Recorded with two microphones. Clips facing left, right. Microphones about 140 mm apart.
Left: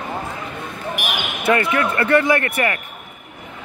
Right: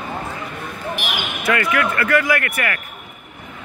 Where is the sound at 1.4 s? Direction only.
25° left (ahead or behind).